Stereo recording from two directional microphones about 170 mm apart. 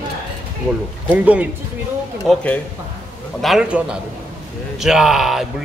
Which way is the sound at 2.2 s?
10° left (ahead or behind).